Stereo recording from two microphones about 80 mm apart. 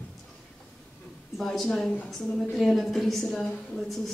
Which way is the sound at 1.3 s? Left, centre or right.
Centre.